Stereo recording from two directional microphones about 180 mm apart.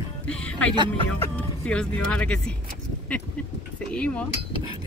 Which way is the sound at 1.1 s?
5° left (ahead or behind).